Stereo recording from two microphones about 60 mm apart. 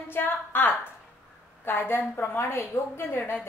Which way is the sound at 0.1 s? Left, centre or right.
Left.